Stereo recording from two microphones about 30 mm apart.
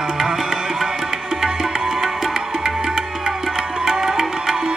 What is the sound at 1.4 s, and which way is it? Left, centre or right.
Music, centre.